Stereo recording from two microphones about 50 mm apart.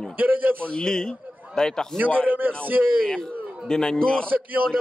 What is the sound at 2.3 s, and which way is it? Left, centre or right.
Speech, right.